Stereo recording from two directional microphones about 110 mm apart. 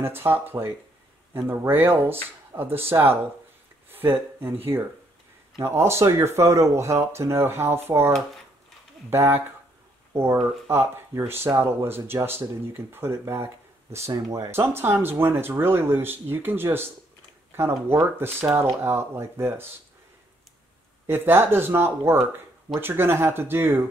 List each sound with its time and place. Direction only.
0.0 s speech: 20° right (ahead or behind)
9.1 s speech: 20° right (ahead or behind)
10.7 s speech: 20° right (ahead or behind)
21.1 s speech: 20° right (ahead or behind)